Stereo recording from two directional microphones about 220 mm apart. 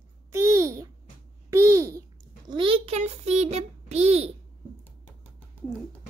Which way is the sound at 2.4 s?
25° right (ahead or behind).